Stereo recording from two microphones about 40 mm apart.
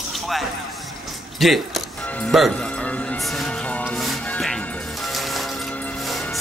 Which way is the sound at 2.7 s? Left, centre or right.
Left.